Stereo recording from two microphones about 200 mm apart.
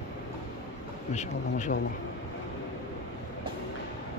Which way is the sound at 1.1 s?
35° left (ahead or behind).